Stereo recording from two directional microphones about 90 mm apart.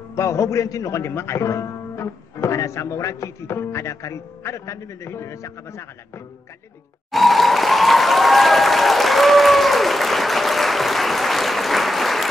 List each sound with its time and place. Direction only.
0.1 s a man's voice: 35° left (ahead or behind)
7.1 s applause: centre (ahead or behind)